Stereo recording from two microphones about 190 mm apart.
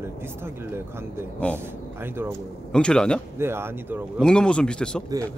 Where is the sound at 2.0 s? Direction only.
10° right (ahead or behind).